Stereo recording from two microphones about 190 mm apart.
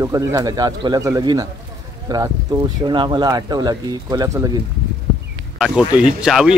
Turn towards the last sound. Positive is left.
turn(degrees=-5)  # may be behind; listen again after turning